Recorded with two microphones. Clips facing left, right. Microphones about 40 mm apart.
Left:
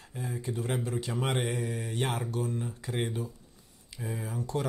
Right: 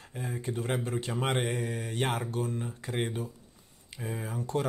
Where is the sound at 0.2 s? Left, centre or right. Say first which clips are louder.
Even; right.